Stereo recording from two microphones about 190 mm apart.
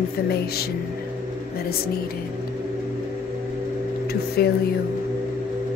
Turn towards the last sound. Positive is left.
turn(degrees=55)  # may be behind; listen again after turning